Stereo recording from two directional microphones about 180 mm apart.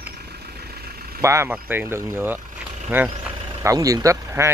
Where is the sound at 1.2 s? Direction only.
15° right (ahead or behind).